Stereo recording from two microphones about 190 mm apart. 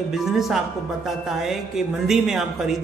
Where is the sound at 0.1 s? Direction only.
Centre (ahead or behind).